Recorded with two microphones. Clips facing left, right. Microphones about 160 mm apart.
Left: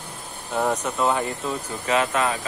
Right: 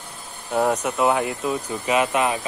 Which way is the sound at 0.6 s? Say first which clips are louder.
Right 3 dB; centre (ahead or behind).